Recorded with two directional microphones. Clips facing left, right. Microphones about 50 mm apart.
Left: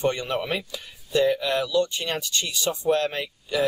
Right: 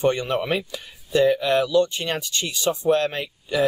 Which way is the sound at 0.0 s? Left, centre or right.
Right.